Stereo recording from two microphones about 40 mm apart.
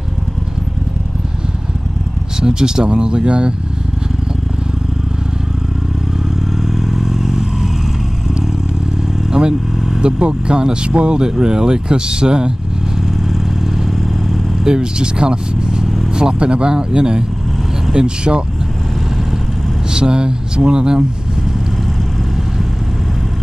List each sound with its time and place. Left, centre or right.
2.4 s speech: centre
6.5 s vehicle: centre
9.3 s speech: centre
13.1 s vehicle: centre
14.6 s speech: centre
19.9 s speech: right